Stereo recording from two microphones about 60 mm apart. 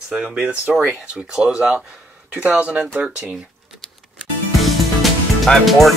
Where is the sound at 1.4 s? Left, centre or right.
Centre.